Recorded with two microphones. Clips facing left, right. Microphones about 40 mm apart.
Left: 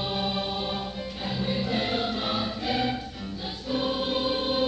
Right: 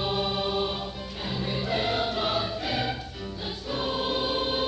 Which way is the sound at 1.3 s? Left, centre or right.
Centre.